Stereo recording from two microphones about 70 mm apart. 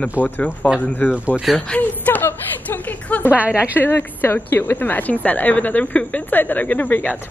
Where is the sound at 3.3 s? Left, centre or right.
Centre.